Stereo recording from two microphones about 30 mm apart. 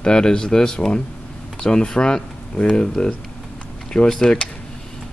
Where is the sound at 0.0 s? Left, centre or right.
Left.